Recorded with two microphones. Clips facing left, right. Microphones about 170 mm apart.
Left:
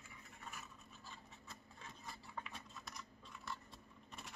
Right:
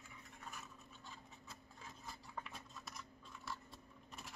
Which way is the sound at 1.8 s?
Centre (ahead or behind).